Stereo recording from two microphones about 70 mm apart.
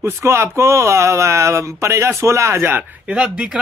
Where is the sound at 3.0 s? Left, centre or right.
Centre.